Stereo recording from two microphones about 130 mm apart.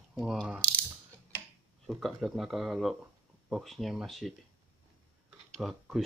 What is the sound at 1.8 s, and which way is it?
Speech, centre (ahead or behind).